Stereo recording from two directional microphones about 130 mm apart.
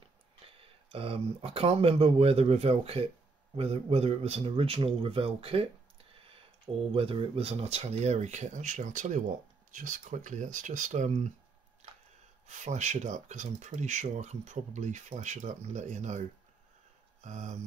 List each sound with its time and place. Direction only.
0.5 s speech: 45° right (ahead or behind)
6.9 s speech: 45° right (ahead or behind)
11.8 s a sound: 60° right (ahead or behind)
12.4 s speech: 65° right (ahead or behind)